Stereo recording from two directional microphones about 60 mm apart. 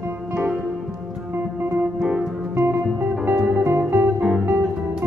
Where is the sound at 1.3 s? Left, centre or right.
Right.